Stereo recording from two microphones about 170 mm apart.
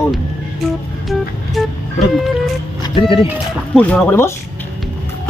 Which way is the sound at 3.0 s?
35° left (ahead or behind).